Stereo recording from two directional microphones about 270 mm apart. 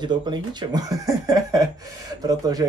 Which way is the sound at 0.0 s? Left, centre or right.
Centre.